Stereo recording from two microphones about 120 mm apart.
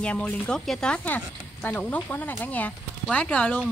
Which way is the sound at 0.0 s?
10° left (ahead or behind).